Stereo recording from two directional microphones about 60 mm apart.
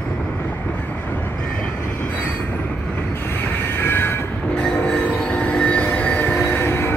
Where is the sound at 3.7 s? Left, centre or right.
Left.